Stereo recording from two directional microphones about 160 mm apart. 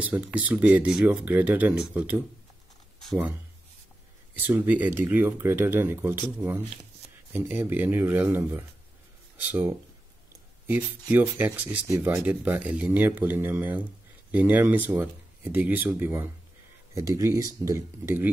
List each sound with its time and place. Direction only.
0.0 s speech: 10° right (ahead or behind)
4.4 s speech: 10° right (ahead or behind)